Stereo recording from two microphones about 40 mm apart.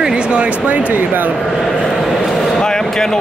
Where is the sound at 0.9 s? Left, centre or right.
Right.